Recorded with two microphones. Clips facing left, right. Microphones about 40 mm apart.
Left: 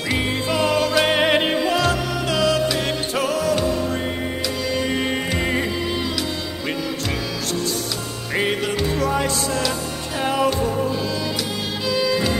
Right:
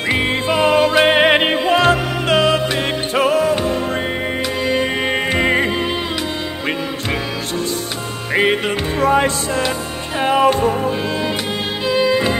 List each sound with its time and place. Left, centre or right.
0.1 s music: right
8.4 s music: right
11.9 s music: right